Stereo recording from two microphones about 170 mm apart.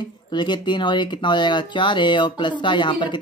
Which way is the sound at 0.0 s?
25° left (ahead or behind).